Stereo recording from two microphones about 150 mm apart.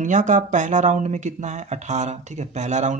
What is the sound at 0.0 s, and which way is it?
A man's voice, 55° right (ahead or behind).